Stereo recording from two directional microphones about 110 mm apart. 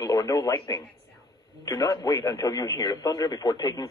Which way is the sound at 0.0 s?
30° left (ahead or behind).